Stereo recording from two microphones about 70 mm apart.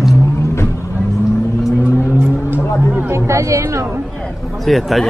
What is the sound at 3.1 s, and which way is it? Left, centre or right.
Speech, right.